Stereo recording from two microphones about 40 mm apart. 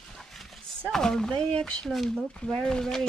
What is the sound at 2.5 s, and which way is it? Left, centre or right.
Speech, centre.